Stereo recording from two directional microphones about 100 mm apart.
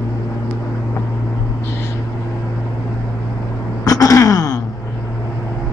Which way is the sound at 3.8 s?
35° left (ahead or behind).